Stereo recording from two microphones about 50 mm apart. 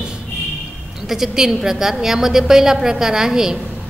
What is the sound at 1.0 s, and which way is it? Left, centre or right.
A woman's voice, centre.